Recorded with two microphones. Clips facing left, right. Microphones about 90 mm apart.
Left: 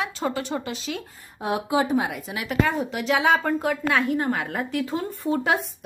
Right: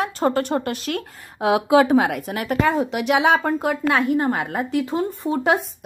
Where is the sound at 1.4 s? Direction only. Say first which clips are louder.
Right 7 dB; 90° right; by 2.5 s 55° right (ahead or behind).